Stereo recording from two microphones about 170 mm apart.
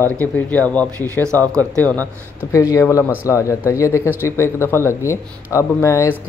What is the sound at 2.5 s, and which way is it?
Speech, 20° left (ahead or behind).